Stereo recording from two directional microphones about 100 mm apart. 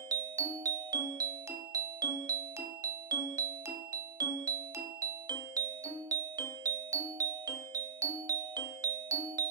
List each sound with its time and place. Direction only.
0.1 s music: 35° right (ahead or behind)